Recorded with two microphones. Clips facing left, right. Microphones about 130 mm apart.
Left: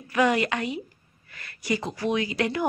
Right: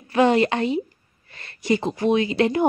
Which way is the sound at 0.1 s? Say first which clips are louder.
Right 5 dB; 30° right (ahead or behind).